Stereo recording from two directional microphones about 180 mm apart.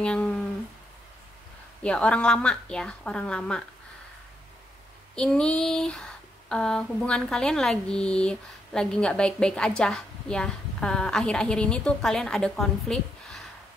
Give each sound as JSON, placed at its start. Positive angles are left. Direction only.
{"t": 0.0, "sound": "speech", "side_deg": 5}
{"t": 1.8, "sound": "a woman's voice", "side_deg": 5}
{"t": 5.1, "sound": "a woman's voice", "side_deg": 5}